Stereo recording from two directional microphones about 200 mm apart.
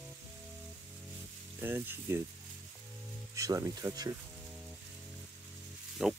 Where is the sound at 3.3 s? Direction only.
15° right (ahead or behind).